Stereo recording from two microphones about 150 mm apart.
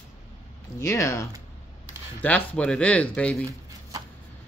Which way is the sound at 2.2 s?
10° left (ahead or behind).